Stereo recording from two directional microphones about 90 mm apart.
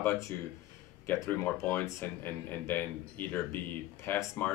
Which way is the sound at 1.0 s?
25° left (ahead or behind).